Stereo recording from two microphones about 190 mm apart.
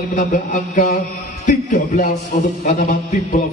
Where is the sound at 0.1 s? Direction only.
45° left (ahead or behind).